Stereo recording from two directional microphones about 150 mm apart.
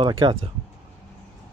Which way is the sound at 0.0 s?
35° right (ahead or behind).